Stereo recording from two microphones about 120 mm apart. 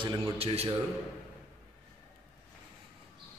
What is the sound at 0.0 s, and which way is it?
Speech, 45° right (ahead or behind).